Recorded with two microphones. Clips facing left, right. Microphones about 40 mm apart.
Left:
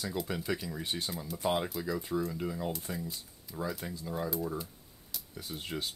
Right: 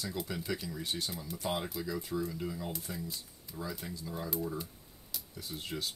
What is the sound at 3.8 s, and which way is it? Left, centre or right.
Speech, left.